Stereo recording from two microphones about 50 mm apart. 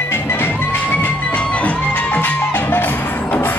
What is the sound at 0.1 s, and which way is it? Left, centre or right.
Music, left.